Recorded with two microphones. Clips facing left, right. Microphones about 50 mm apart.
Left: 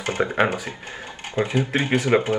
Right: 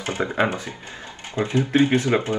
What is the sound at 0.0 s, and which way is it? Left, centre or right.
Speech, left.